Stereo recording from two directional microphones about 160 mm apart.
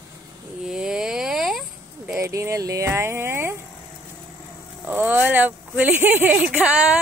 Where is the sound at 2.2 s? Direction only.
15° right (ahead or behind).